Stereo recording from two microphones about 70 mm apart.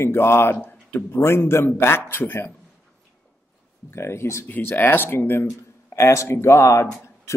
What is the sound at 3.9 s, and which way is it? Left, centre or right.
Speech, left.